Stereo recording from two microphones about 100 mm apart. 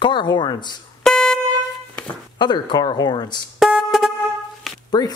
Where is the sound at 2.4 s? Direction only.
45° left (ahead or behind).